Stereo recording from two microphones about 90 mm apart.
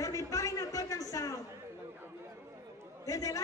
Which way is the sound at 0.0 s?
40° left (ahead or behind).